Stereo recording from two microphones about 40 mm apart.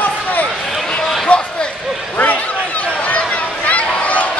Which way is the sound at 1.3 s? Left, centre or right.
Left.